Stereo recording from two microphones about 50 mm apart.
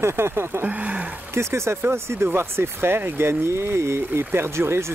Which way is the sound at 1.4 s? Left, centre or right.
Right.